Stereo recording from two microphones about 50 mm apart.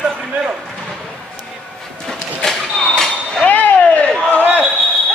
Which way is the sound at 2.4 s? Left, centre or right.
Centre.